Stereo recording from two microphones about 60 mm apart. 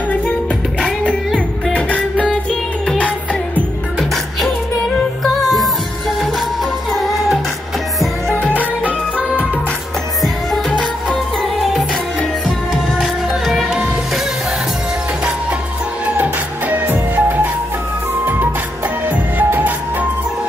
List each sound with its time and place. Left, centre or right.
1.7 s music: left
5.2 s music: centre
8.4 s music: left
13.0 s music: centre
16.1 s music: right
19.0 s music: right